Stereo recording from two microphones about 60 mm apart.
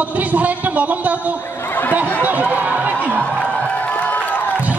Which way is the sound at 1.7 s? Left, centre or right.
Left.